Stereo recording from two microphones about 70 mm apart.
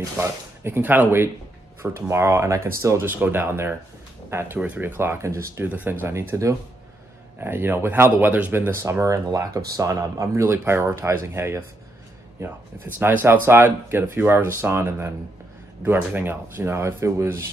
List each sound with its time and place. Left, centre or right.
0.2 s speech: right
3.3 s speech: right
4.6 s speech: right
5.6 s speech: right
7.3 s speech: right
10.5 s speech: right